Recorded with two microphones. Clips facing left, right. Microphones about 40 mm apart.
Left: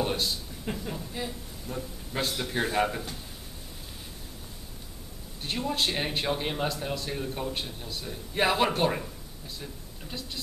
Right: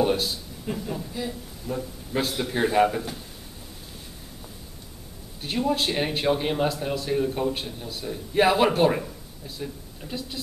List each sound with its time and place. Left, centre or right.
0.0 s a sound: centre
0.7 s speech: left
1.7 s a man's voice: centre
5.4 s a man's voice: centre